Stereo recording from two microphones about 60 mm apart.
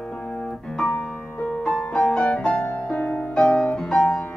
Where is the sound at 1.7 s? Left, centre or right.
Centre.